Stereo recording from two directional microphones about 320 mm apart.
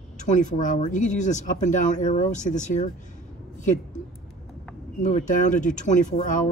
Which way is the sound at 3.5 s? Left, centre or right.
Left.